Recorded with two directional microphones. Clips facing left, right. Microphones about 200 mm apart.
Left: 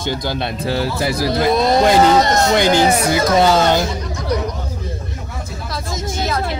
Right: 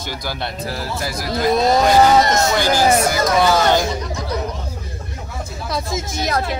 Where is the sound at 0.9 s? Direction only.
25° left (ahead or behind).